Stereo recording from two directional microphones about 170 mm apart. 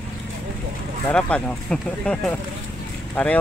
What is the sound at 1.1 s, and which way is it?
Speech, 5° left (ahead or behind).